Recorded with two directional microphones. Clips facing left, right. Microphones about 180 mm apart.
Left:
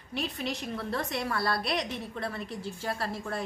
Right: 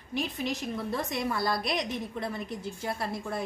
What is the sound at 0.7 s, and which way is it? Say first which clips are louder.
A woman's voice: right 1 dB; 15° right (ahead or behind).